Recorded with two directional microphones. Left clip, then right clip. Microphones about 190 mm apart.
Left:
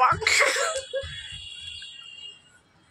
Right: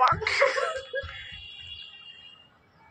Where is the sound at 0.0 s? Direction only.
30° left (ahead or behind).